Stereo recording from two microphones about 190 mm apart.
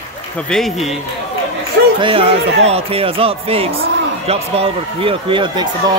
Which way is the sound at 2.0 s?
30° right (ahead or behind).